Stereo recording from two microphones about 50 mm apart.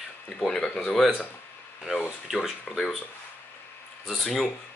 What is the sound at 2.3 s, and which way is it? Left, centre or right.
Speech, centre.